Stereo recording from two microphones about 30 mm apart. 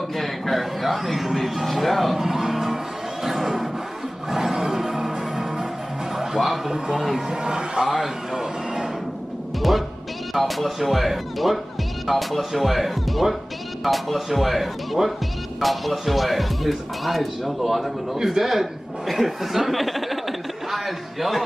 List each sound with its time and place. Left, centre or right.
0.1 s a sound: centre
1.3 s speech: centre
2.1 s music: centre
3.3 s a sound: centre
4.3 s music: centre
7.0 s speech: centre
7.2 s a man's voice: right
7.8 s a sound: centre
9.6 s music: centre
10.3 s speech: centre
18.1 s speech: centre